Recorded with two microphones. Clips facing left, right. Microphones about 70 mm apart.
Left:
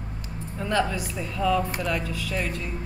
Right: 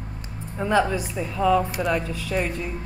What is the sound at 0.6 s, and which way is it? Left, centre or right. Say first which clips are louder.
A woman's voice: right 4 dB; centre.